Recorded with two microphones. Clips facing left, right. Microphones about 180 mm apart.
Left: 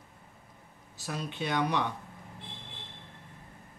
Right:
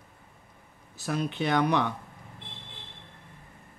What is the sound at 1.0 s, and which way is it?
Speech, 65° right (ahead or behind).